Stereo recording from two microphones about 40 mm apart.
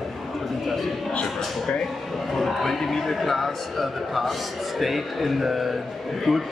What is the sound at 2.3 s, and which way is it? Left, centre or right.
Speech, centre.